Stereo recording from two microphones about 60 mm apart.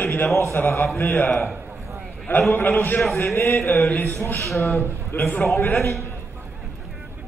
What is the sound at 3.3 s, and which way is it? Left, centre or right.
A man's voice, left.